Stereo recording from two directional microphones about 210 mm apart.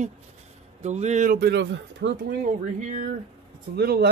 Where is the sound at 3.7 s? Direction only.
50° right (ahead or behind).